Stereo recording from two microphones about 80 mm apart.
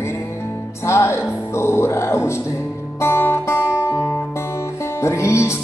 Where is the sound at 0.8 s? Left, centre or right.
Left.